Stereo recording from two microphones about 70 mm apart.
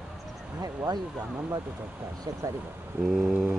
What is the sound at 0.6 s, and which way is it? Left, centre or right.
Speech, right.